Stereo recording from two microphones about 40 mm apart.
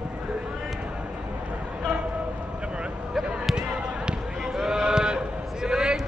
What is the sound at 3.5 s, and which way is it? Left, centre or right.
Basketball bounce, right.